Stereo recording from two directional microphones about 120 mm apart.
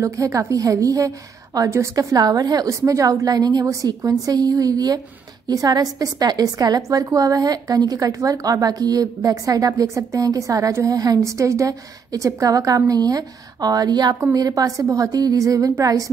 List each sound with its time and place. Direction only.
0.0 s a woman's voice: 25° right (ahead or behind)